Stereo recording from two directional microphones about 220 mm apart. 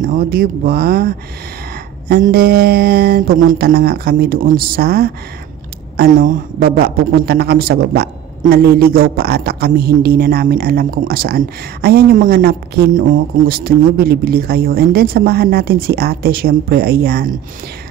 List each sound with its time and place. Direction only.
0.0 s speech: 40° right (ahead or behind)